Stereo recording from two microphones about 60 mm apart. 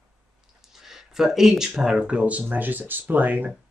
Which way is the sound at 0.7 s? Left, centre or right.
Centre.